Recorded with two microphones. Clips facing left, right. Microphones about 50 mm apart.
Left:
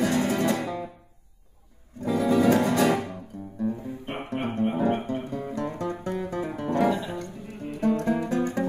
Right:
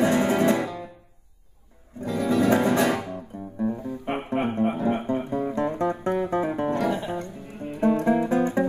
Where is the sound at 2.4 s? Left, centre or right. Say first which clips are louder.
Right 1 dB; centre.